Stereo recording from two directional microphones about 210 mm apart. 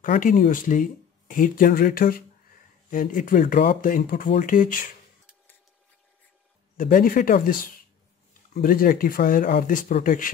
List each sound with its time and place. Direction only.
0.0 s speech: 40° left (ahead or behind)
6.8 s speech: 40° left (ahead or behind)
8.5 s speech: 45° left (ahead or behind)